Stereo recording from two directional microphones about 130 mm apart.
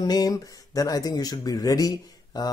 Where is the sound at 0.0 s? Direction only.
30° left (ahead or behind).